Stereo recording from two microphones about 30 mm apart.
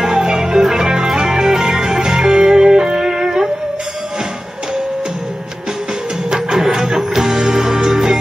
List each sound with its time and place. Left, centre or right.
0.0 s music: right
6.3 s music: right